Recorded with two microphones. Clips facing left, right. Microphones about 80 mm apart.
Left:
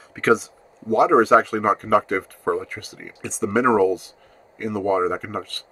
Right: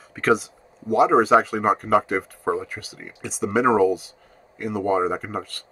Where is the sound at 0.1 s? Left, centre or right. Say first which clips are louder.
Left 2 dB; centre.